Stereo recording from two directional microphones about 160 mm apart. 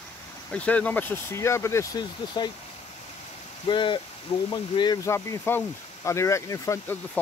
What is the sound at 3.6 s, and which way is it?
Speech, 30° left (ahead or behind).